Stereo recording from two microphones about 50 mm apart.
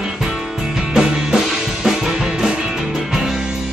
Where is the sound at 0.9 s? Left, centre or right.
Centre.